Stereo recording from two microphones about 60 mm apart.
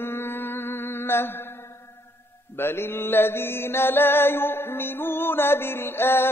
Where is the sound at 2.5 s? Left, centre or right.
Left.